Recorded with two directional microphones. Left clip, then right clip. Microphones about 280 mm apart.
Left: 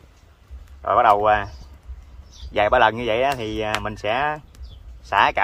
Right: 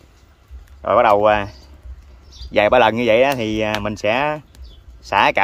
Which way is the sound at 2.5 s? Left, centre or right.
Right.